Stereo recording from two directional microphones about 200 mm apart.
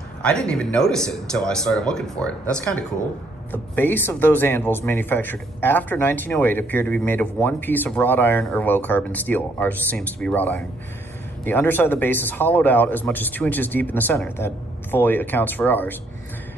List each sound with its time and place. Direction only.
0.2 s speech: 5° left (ahead or behind)